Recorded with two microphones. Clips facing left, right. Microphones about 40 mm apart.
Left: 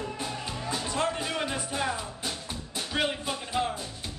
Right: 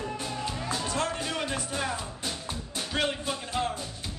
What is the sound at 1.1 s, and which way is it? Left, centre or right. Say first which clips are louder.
Music: even; centre.